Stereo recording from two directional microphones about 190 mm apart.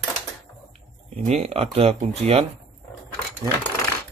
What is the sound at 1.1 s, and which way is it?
Speech, 35° right (ahead or behind).